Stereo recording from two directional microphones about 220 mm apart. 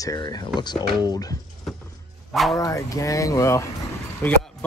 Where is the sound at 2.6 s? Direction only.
15° left (ahead or behind).